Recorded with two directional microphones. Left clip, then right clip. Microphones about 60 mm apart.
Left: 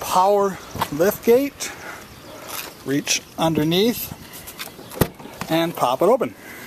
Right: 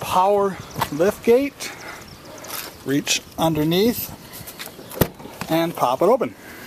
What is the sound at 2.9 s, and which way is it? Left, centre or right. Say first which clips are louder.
Speech: right 1 dB; right.